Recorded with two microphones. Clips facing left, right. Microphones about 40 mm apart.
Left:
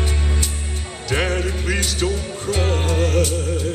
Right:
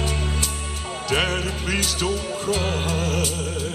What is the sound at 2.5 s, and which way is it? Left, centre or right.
Music, left.